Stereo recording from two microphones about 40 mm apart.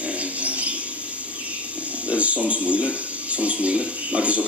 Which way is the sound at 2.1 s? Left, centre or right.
Right.